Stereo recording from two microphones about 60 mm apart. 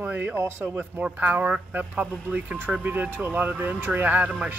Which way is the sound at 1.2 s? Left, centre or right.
Right.